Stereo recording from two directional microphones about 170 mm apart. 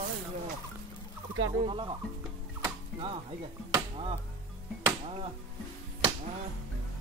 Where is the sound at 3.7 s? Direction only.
30° right (ahead or behind).